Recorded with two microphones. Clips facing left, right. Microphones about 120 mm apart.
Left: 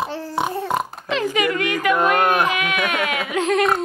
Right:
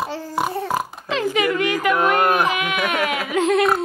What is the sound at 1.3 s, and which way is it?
Speech, 20° right (ahead or behind).